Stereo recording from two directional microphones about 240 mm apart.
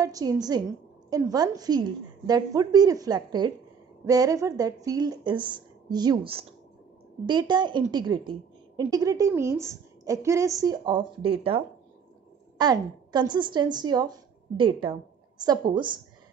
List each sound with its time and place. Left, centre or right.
0.0 s a woman's voice: centre
12.5 s a woman's voice: centre